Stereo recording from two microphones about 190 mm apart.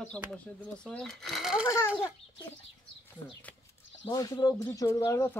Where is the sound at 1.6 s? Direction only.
15° left (ahead or behind).